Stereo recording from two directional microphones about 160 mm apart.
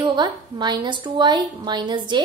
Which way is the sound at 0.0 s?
25° right (ahead or behind).